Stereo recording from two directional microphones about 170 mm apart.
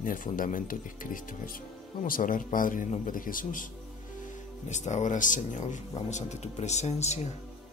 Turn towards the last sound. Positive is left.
turn(degrees=40)  # may be behind; listen again after turning